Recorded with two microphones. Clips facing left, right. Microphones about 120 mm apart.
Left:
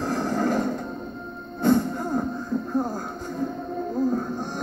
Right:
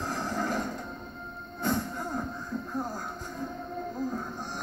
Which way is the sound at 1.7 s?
30° left (ahead or behind).